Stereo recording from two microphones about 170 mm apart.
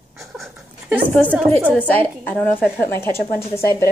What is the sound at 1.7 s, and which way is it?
A woman's voice, 10° left (ahead or behind).